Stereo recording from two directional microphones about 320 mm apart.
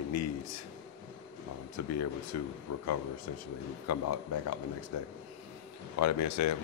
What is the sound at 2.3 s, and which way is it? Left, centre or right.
A man's voice, left.